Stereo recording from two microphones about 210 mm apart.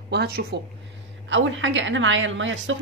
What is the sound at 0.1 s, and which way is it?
Speech, 50° right (ahead or behind).